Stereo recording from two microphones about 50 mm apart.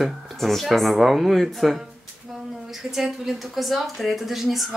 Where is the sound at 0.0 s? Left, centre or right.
Centre.